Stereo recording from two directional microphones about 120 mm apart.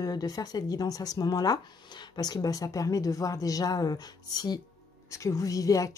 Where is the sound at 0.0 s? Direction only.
30° left (ahead or behind).